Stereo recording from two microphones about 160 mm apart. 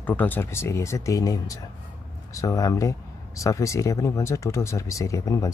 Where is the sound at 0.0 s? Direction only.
10° left (ahead or behind).